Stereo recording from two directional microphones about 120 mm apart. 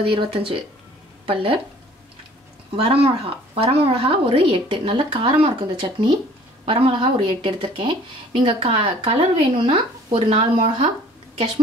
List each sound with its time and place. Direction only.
0.0 s speech: 45° right (ahead or behind)
2.7 s speech: 50° right (ahead or behind)